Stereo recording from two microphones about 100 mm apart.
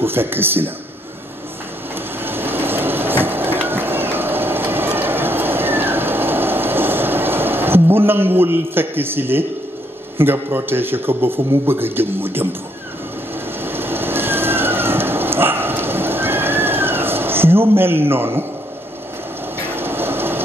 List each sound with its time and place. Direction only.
0.0 s speech: 20° right (ahead or behind)
2.2 s a sound: 20° right (ahead or behind)
10.1 s speech: 20° right (ahead or behind)
13.6 s train: 20° right (ahead or behind)
19.7 s train: 20° right (ahead or behind)